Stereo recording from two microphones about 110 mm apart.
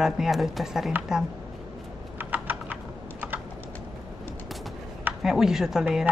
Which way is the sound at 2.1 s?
15° right (ahead or behind).